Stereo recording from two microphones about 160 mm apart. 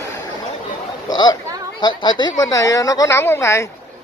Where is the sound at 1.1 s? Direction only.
25° left (ahead or behind).